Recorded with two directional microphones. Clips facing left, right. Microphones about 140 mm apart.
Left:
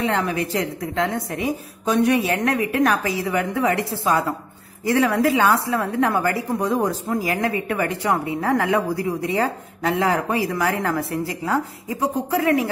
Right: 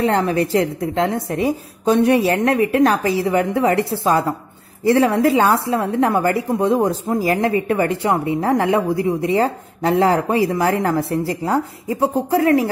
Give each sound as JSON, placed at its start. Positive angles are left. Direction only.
{"t": 0.0, "sound": "a woman's voice", "side_deg": -35}